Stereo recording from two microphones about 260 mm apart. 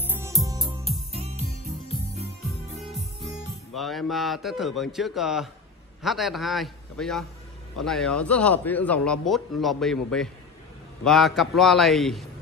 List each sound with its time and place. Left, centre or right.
0.0 s music: centre
2.9 s a man's voice: centre